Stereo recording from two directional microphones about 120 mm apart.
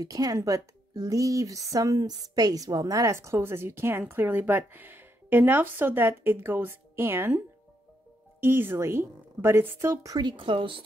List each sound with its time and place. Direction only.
0.0 s speech: 30° right (ahead or behind); by 10.8 s 45° right (ahead or behind)